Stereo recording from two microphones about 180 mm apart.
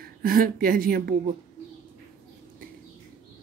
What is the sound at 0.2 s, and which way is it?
Speech, 55° right (ahead or behind).